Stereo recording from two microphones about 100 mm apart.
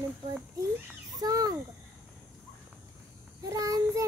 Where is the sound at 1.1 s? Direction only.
40° right (ahead or behind).